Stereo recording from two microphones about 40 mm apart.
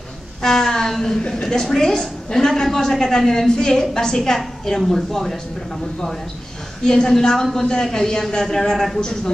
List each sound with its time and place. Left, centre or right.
0.4 s a sound: centre
1.4 s a woman's voice: centre
6.8 s a woman's voice: centre